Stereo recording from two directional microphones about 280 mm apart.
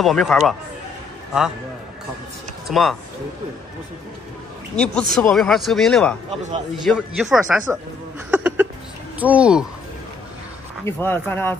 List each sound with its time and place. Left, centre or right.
0.0 s speech: centre
2.7 s speech: centre
4.7 s speech: centre
6.3 s a man's voice: right
6.9 s speech: centre
8.3 s a sound: centre
9.2 s speech: centre
10.9 s speech: centre